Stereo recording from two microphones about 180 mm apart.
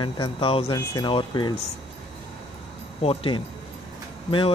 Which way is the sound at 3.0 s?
30° left (ahead or behind).